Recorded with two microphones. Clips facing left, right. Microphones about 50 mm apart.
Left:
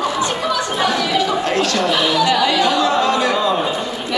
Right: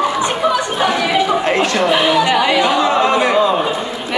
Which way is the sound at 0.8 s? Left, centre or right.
Right.